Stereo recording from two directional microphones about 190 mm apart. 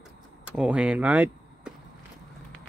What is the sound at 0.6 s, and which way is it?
Speech, 5° right (ahead or behind).